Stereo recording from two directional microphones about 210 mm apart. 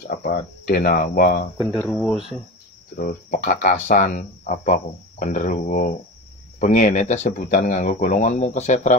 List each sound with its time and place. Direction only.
0.1 s speech: 40° left (ahead or behind)
1.8 s speech: 5° left (ahead or behind)
3.0 s speech: 40° left (ahead or behind)